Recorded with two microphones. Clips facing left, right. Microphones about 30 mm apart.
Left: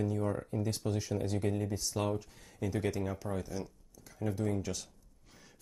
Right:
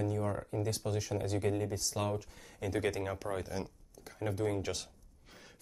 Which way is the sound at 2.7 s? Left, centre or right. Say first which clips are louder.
Right 1 dB; right.